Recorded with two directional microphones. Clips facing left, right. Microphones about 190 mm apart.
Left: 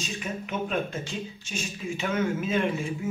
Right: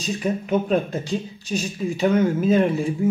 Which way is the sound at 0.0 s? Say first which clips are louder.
Right 9 dB; 35° right (ahead or behind).